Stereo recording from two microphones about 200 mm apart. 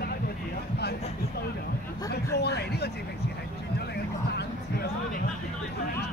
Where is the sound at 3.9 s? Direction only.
55° left (ahead or behind).